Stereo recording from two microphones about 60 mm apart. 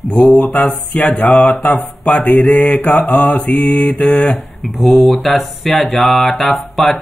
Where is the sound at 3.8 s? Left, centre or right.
Centre.